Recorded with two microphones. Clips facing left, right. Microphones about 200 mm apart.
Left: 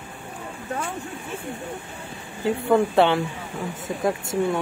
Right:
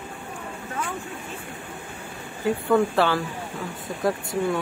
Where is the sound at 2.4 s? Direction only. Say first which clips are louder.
Left 1 dB; 20° left (ahead or behind).